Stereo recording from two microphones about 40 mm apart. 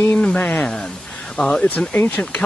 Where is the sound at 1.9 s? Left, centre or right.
Left.